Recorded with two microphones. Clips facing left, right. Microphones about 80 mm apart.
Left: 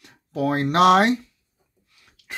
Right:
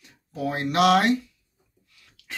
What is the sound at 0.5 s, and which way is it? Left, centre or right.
Speech, left.